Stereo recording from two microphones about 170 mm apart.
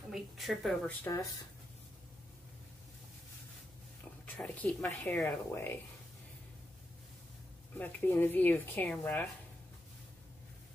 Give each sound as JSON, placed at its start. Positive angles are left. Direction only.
{"t": 0.1, "sound": "speech", "side_deg": 0}
{"t": 0.8, "sound": "speech", "side_deg": 15}
{"t": 4.3, "sound": "a woman's voice", "side_deg": 5}
{"t": 5.2, "sound": "speech", "side_deg": 15}
{"t": 7.7, "sound": "speech", "side_deg": 10}